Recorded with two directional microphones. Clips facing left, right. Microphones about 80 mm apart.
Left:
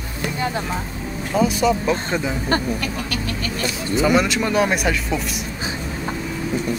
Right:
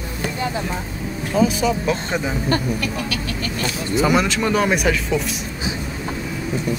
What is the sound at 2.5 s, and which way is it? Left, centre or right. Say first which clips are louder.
Speech: left 1 dB; left.